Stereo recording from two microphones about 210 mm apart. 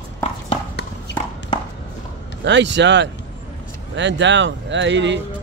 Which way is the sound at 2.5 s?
55° right (ahead or behind).